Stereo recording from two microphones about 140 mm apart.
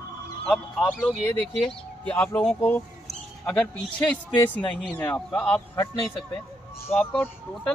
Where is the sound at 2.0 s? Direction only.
10° left (ahead or behind).